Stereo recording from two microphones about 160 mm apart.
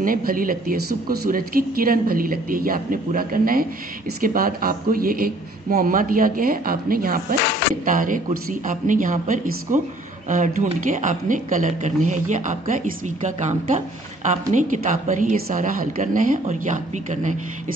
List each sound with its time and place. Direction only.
0.0 s speech: 60° right (ahead or behind)